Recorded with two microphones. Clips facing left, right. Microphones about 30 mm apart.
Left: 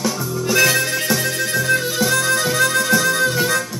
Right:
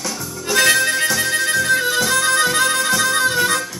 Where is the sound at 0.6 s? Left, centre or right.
Centre.